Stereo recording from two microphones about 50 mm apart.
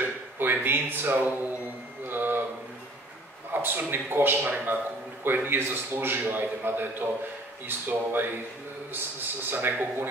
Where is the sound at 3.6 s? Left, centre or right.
Right.